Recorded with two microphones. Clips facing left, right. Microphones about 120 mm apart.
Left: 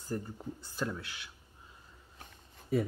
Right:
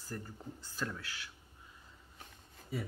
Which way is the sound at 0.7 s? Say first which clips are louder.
Left 4 dB; 15° left (ahead or behind).